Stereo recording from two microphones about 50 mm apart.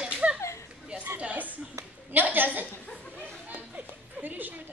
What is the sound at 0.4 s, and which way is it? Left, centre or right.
Children playing, left.